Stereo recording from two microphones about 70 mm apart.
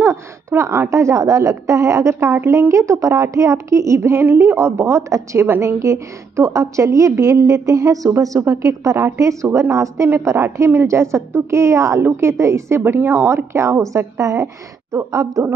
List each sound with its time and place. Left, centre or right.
0.0 s a woman's voice: right
2.3 s a woman's voice: right